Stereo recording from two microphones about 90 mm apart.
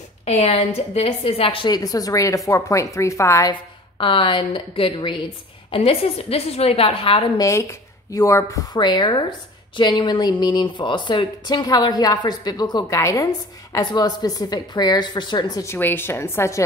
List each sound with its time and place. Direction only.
1.0 s a woman's voice: 90° left
1.7 s speech: 45° left (ahead or behind)
4.0 s speech: 70° left (ahead or behind)
5.7 s a woman's voice: 90° left
7.3 s speech: 35° left (ahead or behind)
8.7 s speech: 55° left (ahead or behind)
12.9 s speech: 35° left (ahead or behind)
15.6 s a woman's voice: 25° left (ahead or behind)